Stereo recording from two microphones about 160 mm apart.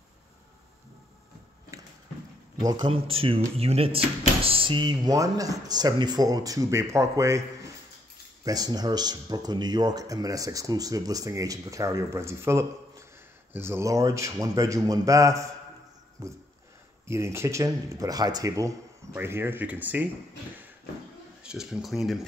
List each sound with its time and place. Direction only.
2.6 s speech: 30° right (ahead or behind)
8.5 s speech: 25° right (ahead or behind)
21.4 s speech: 5° right (ahead or behind)